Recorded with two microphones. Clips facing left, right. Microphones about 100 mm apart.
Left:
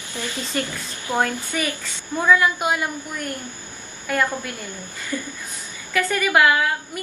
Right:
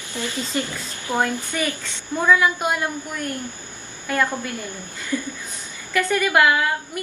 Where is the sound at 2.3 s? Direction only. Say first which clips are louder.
Left 1 dB; centre (ahead or behind).